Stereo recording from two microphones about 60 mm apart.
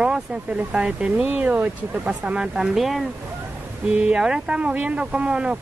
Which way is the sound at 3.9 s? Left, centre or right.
Centre.